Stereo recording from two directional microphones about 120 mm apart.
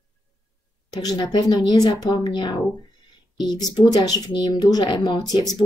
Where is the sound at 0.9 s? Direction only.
30° left (ahead or behind).